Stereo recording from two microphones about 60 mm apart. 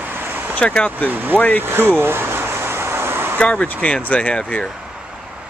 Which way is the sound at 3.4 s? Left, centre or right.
Centre.